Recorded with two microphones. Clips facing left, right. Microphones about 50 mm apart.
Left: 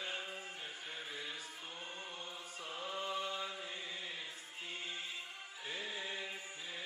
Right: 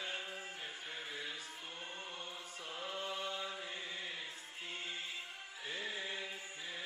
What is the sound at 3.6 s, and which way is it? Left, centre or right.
Chant, right.